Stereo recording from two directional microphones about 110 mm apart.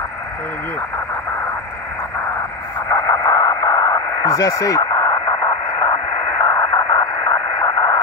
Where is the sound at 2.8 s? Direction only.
30° left (ahead or behind).